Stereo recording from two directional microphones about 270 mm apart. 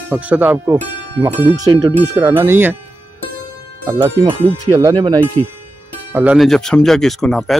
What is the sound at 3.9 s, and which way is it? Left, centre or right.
Speech, centre.